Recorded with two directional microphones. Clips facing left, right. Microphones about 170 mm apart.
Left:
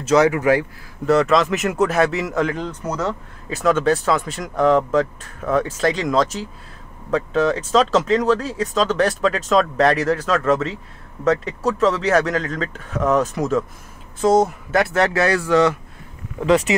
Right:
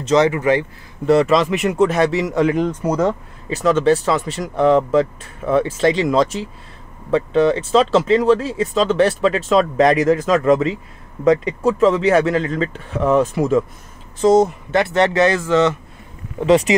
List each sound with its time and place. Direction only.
0.0 s speech: 5° left (ahead or behind)
2.4 s speech: 15° right (ahead or behind)
3.4 s speech: centre (ahead or behind)
16.3 s speech: 30° right (ahead or behind)